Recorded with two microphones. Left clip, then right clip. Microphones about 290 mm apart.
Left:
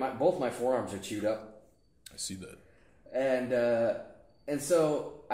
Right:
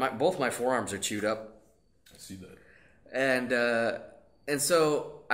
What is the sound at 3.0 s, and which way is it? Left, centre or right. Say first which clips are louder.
Speech: right 2 dB; right.